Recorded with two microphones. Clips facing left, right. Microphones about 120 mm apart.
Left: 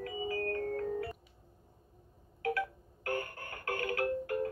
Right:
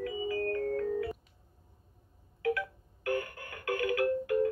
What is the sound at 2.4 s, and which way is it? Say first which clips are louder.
Music: right 2 dB; 30° left (ahead or behind).